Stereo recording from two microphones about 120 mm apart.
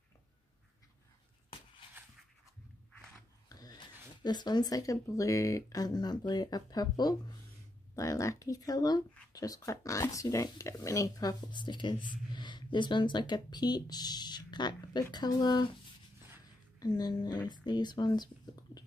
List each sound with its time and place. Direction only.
3.4 s a sound: 30° left (ahead or behind)
4.2 s speech: 35° left (ahead or behind)
16.8 s speech: 35° left (ahead or behind)